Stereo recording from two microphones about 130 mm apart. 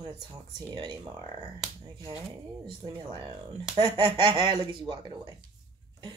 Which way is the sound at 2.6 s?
40° right (ahead or behind).